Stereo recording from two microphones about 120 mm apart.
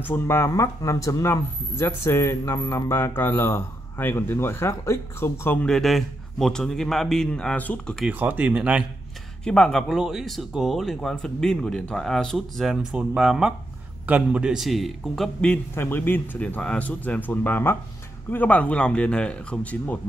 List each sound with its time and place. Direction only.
0.0 s speech: 20° left (ahead or behind)
5.7 s speech: centre (ahead or behind)
8.1 s speech: 15° right (ahead or behind)
9.4 s speech: 5° left (ahead or behind)
15.7 s speech: 20° left (ahead or behind)